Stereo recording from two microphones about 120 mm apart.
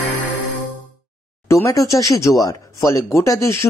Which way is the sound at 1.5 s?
25° left (ahead or behind).